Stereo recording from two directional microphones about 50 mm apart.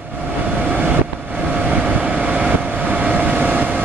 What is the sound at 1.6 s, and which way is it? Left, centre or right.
Vehicle, right.